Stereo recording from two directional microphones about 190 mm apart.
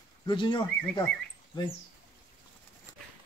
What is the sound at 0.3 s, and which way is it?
Speech, 25° left (ahead or behind).